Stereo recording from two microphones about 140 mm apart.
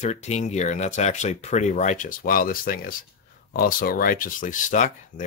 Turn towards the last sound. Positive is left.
turn(degrees=65)  # may be behind; listen again after turning